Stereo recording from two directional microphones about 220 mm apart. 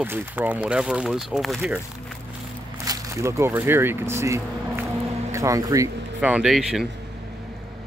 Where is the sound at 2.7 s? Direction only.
15° right (ahead or behind).